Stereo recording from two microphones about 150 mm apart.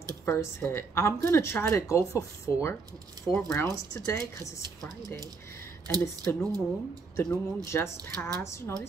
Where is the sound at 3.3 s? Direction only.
Centre (ahead or behind).